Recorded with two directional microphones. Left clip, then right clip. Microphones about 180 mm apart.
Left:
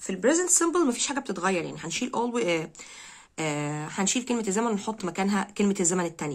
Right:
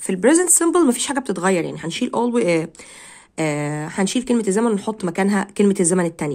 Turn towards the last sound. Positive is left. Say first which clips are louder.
# right 8 dB
turn(degrees=-35)  # may be behind; listen again after turning